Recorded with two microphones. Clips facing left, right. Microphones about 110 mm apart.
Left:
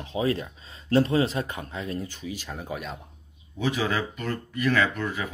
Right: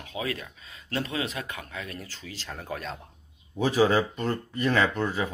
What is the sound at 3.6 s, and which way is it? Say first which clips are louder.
Speech: right 4 dB; 35° right (ahead or behind).